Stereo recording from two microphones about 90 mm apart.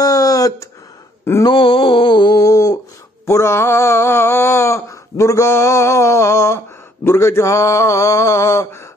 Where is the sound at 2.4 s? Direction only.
40° left (ahead or behind).